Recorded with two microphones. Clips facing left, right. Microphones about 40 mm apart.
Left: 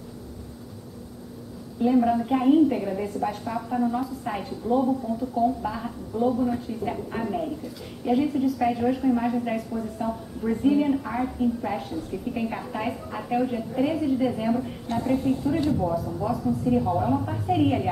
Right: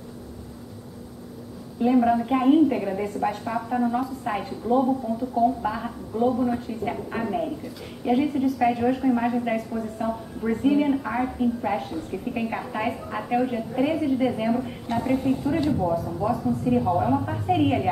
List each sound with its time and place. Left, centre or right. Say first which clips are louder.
1.8 s a woman's voice: right 1 dB; centre